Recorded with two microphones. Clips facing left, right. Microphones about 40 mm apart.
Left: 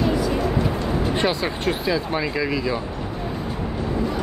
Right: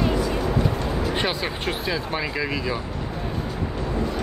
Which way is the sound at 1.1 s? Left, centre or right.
Centre.